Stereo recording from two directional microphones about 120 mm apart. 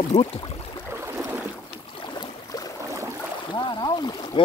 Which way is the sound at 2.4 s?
30° left (ahead or behind).